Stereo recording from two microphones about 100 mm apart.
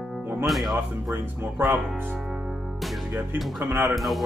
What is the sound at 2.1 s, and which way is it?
Music, 5° right (ahead or behind).